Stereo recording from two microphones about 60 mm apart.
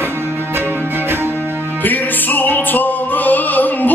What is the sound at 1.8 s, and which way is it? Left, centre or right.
Music, left.